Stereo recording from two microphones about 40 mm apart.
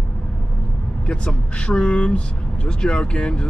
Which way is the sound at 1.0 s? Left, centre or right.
Left.